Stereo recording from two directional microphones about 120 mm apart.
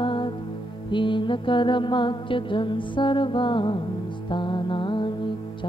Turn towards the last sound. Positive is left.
turn(degrees=45)  # may be behind; listen again after turning